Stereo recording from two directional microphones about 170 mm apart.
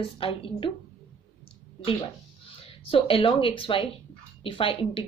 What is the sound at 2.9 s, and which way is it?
Speech, 35° left (ahead or behind).